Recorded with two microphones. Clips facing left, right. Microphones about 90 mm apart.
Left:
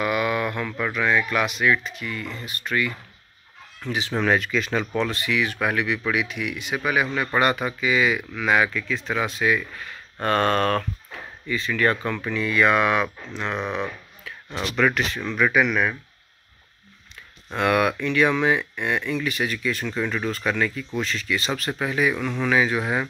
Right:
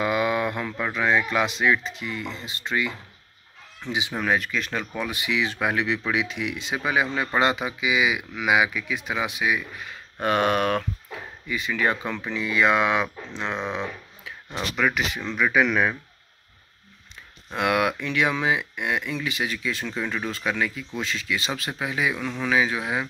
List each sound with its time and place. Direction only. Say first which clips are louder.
0.0 s speech: even; 25° right (ahead or behind)
4.1 s speech: left 4 dB; 5° right (ahead or behind)
5.0 s speech: left 2 dB; 15° right (ahead or behind)
14.6 s speech: left 3 dB; centre (ahead or behind)
15.0 s speech: left 2 dB; 10° right (ahead or behind)
17.6 s speech: left 2 dB; 15° right (ahead or behind)